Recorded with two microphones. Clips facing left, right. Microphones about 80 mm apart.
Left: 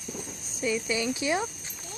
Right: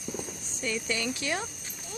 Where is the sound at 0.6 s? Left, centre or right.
Centre.